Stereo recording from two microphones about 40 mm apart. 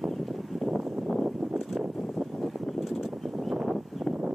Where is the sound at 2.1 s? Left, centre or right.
Centre.